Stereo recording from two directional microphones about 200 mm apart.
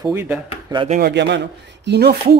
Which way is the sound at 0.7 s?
25° right (ahead or behind).